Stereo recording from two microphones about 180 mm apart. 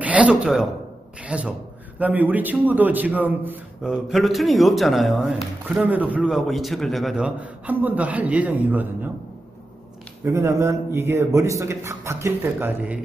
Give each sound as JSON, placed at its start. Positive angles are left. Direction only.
{"t": 0.0, "sound": "a man's voice", "side_deg": -5}
{"t": 10.2, "sound": "a man's voice", "side_deg": -15}